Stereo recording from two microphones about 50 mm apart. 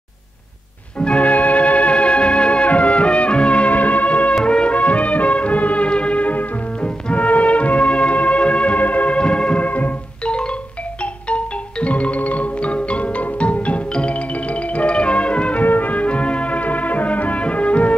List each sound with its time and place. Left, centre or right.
1.0 s music: left
9.7 s music: left
10.2 s music: centre
15.6 s music: left